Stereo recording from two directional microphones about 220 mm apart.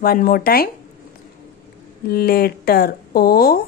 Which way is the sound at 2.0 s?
45° left (ahead or behind).